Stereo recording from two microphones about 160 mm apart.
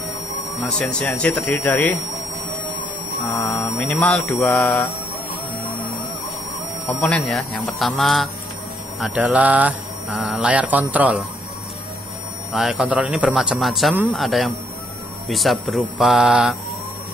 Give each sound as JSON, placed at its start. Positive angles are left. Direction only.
{"t": 0.7, "sound": "speech", "side_deg": 5}
{"t": 3.3, "sound": "a sound", "side_deg": 20}
{"t": 3.8, "sound": "a man's voice", "side_deg": 5}
{"t": 6.9, "sound": "a man's voice", "side_deg": 5}
{"t": 9.0, "sound": "mantra", "side_deg": -10}
{"t": 12.5, "sound": "a man's voice", "side_deg": -5}